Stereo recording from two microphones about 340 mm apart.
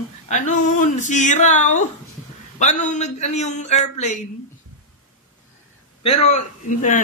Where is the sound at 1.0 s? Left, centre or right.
Left.